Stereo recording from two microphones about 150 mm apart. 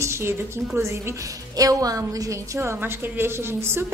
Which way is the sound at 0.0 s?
15° right (ahead or behind).